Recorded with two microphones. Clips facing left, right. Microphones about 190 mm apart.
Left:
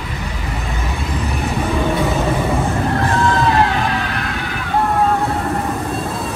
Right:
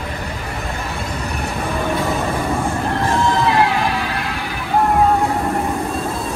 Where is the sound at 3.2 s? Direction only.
15° right (ahead or behind).